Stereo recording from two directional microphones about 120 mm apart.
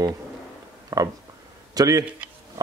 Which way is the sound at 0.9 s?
30° right (ahead or behind).